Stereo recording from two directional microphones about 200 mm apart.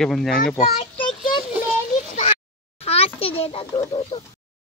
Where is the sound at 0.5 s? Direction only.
25° left (ahead or behind).